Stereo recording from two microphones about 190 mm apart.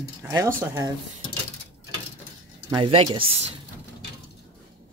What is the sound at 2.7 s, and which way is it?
Speech, 25° right (ahead or behind).